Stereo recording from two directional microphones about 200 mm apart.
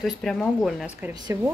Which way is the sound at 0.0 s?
Centre (ahead or behind).